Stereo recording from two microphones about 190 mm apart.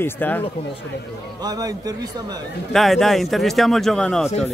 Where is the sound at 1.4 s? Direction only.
20° right (ahead or behind).